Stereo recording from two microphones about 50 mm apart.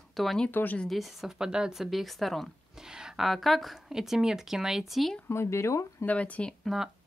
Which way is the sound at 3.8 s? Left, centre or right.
Centre.